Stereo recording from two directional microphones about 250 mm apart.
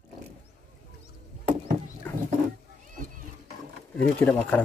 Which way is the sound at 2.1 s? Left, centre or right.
Centre.